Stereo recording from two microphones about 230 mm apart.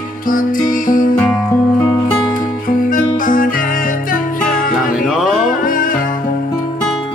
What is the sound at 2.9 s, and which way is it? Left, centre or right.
Music, left.